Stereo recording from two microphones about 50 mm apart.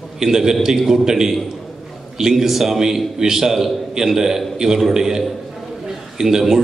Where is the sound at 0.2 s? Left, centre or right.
Centre.